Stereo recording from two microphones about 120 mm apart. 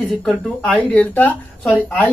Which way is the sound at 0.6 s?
10° left (ahead or behind).